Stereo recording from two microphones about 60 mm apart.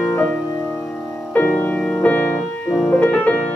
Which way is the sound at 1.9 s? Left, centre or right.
Left.